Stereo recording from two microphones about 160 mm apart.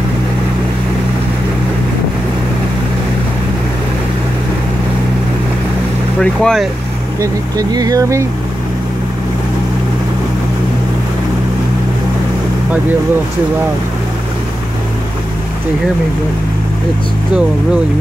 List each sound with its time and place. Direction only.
6.1 s speech: 5° left (ahead or behind)
7.2 s speech: 25° right (ahead or behind)